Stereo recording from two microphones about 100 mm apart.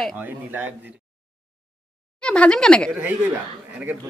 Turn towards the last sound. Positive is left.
turn(degrees=-15)  # may be behind; listen again after turning